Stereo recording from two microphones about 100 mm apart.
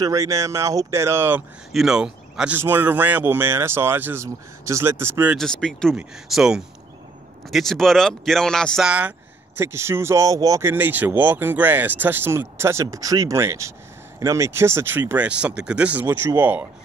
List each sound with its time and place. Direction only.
0.0 s speech: 30° right (ahead or behind)
1.7 s speech: 5° right (ahead or behind)
2.5 s speech: 20° right (ahead or behind)
5.4 s speech: 5° left (ahead or behind)
5.9 s speech: 5° right (ahead or behind)
8.8 s speech: 10° right (ahead or behind)
9.6 s speech: 25° right (ahead or behind)
10.7 s speech: 20° right (ahead or behind)
12.8 s speech: 35° right (ahead or behind); by 16.1 s 15° right (ahead or behind)
16.1 s speech: 25° right (ahead or behind)